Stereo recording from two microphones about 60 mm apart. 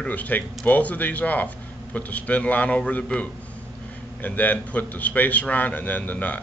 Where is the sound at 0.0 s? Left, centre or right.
Left.